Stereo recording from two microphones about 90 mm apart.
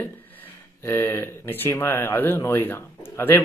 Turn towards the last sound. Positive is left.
turn(degrees=25)  # may be behind; listen again after turning